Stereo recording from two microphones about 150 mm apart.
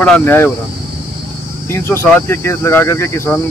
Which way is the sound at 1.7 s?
15° left (ahead or behind).